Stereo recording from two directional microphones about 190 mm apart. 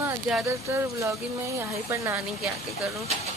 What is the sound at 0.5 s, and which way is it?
A woman's voice, 15° right (ahead or behind).